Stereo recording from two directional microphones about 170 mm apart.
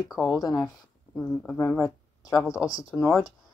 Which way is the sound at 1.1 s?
10° left (ahead or behind).